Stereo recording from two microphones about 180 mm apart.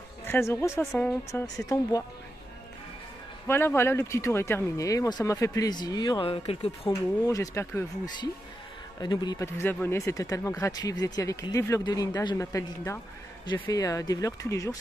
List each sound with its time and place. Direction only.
0.3 s speech: 15° left (ahead or behind)
3.4 s speech: 10° left (ahead or behind); by 6.9 s 35° left (ahead or behind)
6.9 s speech: 15° left (ahead or behind)